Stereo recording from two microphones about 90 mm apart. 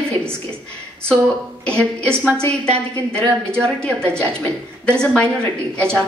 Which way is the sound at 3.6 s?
10° left (ahead or behind).